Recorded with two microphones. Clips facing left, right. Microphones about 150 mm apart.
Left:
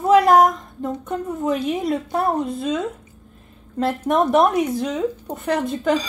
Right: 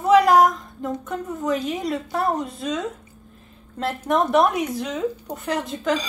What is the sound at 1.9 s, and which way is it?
Cutlery, 25° left (ahead or behind).